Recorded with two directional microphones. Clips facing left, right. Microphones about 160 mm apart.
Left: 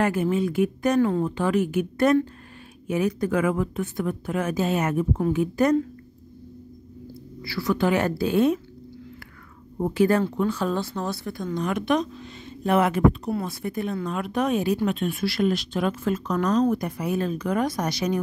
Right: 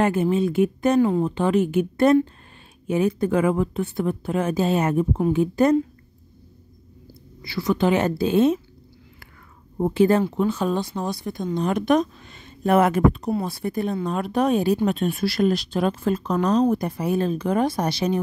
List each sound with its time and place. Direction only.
0.0 s speech: 25° right (ahead or behind)
7.4 s speech: 20° right (ahead or behind)
9.8 s speech: 25° right (ahead or behind); by 13.3 s 45° right (ahead or behind)
13.4 s speech: 35° right (ahead or behind)